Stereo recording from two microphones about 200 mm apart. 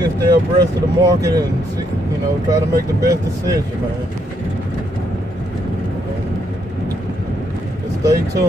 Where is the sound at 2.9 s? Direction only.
15° right (ahead or behind).